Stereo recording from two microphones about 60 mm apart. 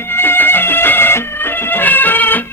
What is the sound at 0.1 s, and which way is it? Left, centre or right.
Music, left.